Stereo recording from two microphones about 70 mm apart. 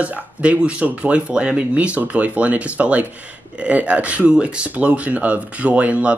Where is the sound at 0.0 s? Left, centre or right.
Centre.